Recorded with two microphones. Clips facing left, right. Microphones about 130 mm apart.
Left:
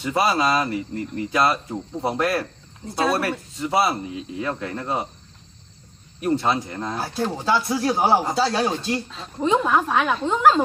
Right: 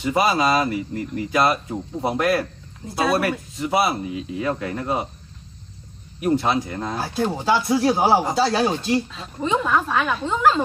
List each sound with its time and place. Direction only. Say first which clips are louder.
0.0 s speech: right 1 dB; 20° right (ahead or behind)
0.6 s speech: right 2 dB; 10° right (ahead or behind)
6.2 s speech: right 1 dB; 15° right (ahead or behind)
6.8 s speech: right 2 dB; 5° right (ahead or behind)